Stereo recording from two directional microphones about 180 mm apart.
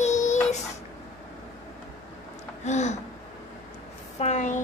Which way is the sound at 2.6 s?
40° left (ahead or behind).